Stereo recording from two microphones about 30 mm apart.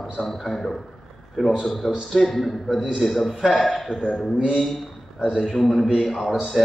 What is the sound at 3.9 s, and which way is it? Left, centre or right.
Speech, left.